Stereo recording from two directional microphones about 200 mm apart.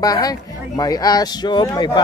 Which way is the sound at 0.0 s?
20° left (ahead or behind).